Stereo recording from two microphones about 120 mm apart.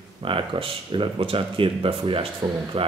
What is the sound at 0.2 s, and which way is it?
Speech, 45° right (ahead or behind).